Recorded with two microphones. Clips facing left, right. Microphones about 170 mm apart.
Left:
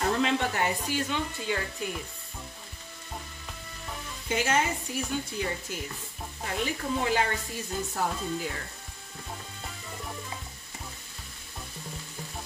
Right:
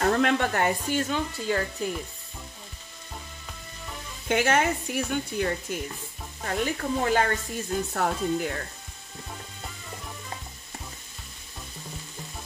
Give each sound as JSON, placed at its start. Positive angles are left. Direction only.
{"t": 0.0, "sound": "speech", "side_deg": -55}
{"t": 4.3, "sound": "speech", "side_deg": -60}
{"t": 6.4, "sound": "speech", "side_deg": -50}
{"t": 7.9, "sound": "speech", "side_deg": -60}